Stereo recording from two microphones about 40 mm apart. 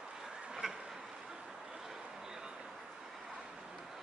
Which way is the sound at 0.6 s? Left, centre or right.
Centre.